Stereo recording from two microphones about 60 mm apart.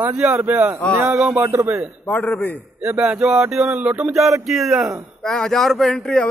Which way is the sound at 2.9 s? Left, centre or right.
Centre.